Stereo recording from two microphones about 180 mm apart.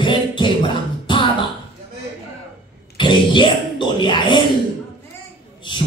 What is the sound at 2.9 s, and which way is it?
Speech, 25° left (ahead or behind).